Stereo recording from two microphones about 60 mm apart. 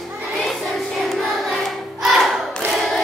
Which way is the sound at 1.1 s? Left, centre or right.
Centre.